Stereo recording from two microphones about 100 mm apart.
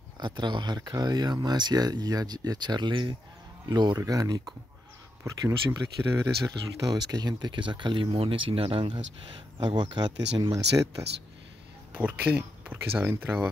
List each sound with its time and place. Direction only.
0.2 s speech: 50° right (ahead or behind)
9.7 s speech: 50° right (ahead or behind)
11.9 s speech: 15° right (ahead or behind)